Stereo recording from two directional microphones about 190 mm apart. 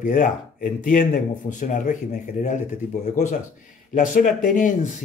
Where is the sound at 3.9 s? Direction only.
40° left (ahead or behind).